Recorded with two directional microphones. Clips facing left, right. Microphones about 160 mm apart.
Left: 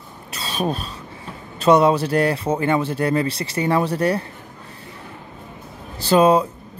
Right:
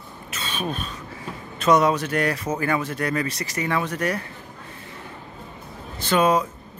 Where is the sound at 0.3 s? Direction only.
35° left (ahead or behind).